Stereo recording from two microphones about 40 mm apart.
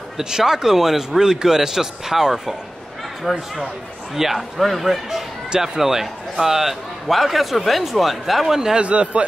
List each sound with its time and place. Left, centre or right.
0.2 s a man's voice: centre
8.7 s a man's voice: right